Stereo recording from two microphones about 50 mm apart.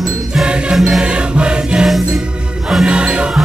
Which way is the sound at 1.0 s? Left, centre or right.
Right.